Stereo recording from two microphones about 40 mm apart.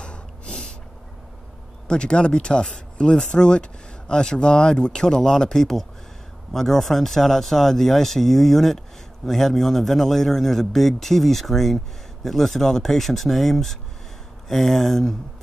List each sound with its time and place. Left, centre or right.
0.0 s snort: left
1.9 s speech: left